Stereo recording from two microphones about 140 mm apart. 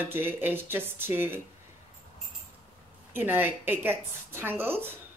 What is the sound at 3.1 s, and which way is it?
Speech, 15° right (ahead or behind).